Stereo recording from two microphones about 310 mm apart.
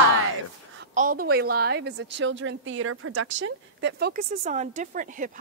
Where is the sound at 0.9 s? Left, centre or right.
Right.